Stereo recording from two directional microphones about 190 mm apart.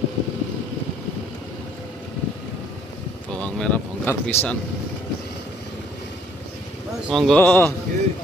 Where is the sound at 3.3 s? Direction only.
5° left (ahead or behind).